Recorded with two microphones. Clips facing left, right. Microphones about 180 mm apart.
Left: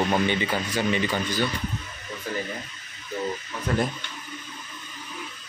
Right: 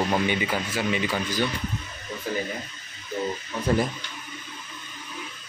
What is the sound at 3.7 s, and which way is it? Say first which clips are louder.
Speech: right 2 dB; 30° right (ahead or behind).